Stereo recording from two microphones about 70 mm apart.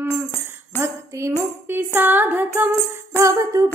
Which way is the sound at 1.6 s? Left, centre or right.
Right.